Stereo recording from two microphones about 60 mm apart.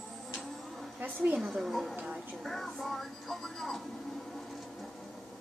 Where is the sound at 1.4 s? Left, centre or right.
Centre.